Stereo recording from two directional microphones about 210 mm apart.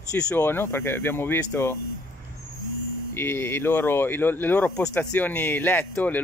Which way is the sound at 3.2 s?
10° left (ahead or behind).